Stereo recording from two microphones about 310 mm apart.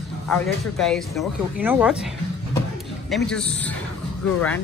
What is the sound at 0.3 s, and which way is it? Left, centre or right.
Speech, centre.